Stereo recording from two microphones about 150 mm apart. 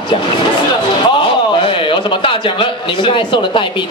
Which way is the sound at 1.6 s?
35° left (ahead or behind).